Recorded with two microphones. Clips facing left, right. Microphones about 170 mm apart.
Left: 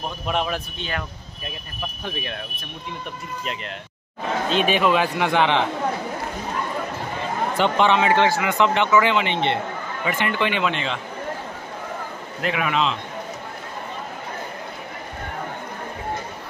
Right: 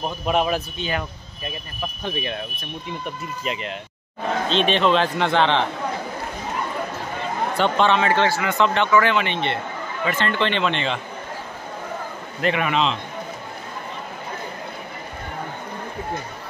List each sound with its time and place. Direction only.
0.3 s speech: 5° right (ahead or behind)
2.0 s speech: centre (ahead or behind)
4.5 s speech: 10° left (ahead or behind)
7.5 s speech: 15° left (ahead or behind)
12.4 s speech: centre (ahead or behind)